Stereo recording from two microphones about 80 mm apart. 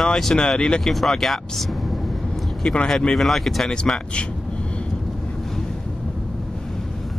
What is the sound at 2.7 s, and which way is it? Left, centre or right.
Speech, centre.